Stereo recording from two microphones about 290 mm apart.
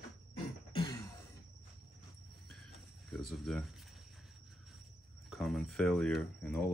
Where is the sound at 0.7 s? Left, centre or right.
Centre.